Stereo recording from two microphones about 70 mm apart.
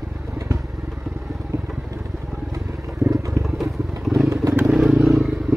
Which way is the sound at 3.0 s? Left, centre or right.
Right.